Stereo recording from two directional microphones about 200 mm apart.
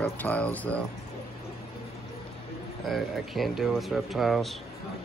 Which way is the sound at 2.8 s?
Centre (ahead or behind).